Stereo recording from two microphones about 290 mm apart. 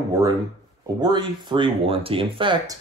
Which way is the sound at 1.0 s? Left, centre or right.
Centre.